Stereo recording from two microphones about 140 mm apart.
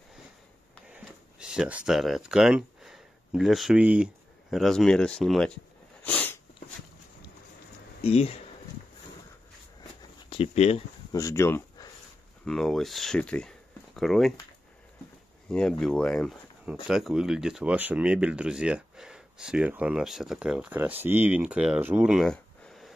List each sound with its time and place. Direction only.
0.8 s speech: 5° right (ahead or behind)
6.0 s sneeze: 15° left (ahead or behind)
8.0 s speech: 45° left (ahead or behind)
10.3 s speech: 45° left (ahead or behind)
11.1 s speech: 25° left (ahead or behind)
12.4 s speech: 5° left (ahead or behind)
15.5 s speech: 5° left (ahead or behind)